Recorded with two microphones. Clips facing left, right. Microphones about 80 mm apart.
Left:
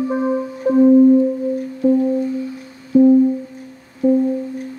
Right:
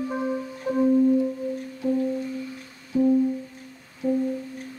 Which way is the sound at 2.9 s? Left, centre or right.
Left.